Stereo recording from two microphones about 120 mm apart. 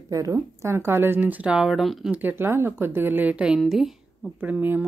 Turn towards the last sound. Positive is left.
turn(degrees=-15)  # may be behind; listen again after turning